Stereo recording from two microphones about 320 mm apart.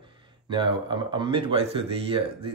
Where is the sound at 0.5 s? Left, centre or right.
Centre.